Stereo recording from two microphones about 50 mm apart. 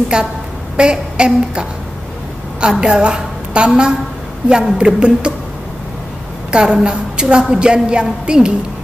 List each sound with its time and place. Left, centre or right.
0.1 s a sound: centre
2.8 s a woman's voice: centre
6.5 s a woman's voice: centre